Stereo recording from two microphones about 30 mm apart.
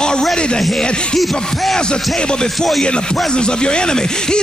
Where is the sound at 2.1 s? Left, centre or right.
Left.